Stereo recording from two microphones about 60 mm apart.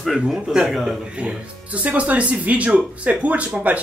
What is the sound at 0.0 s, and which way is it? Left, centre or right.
Speech, centre.